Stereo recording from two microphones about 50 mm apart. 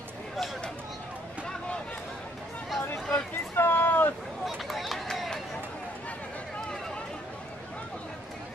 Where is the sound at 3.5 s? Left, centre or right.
Left.